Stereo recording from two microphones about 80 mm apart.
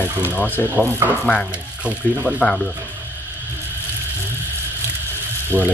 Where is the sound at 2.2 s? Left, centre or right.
Centre.